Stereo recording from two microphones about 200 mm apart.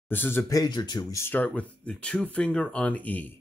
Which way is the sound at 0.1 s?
10° left (ahead or behind).